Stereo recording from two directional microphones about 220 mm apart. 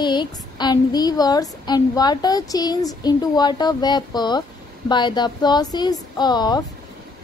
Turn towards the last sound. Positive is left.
turn(degrees=20)  # may be behind; listen again after turning